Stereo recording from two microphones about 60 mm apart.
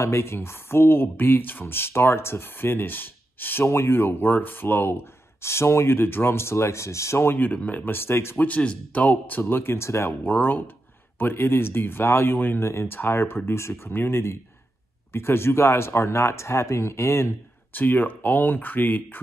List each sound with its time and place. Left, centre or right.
0.0 s speech: left
7.5 s speech: left
8.5 s speech: left
9.4 s speech: left
10.2 s speech: left
17.7 s speech: left